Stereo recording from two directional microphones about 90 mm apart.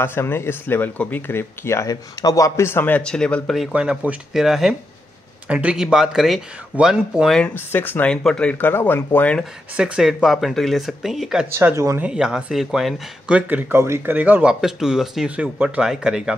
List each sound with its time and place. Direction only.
0.0 s speech: 25° left (ahead or behind)
1.9 s speech: 40° left (ahead or behind); by 3.5 s 10° left (ahead or behind)
3.7 s speech: 10° right (ahead or behind)
7.5 s speech: 20° left (ahead or behind)
8.1 s speech: 5° left (ahead or behind)
8.5 s speech: 20° left (ahead or behind)
9.4 s speech: 10° right (ahead or behind)
11.5 s speech: 35° right (ahead or behind)
12.0 s speech: 5° right (ahead or behind)
13.5 s speech: 20° right (ahead or behind)
13.7 s speech: 30° right (ahead or behind); by 16.3 s 5° right (ahead or behind)